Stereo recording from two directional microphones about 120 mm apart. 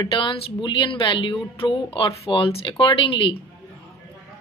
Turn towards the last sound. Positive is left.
turn(degrees=45)  # may be behind; listen again after turning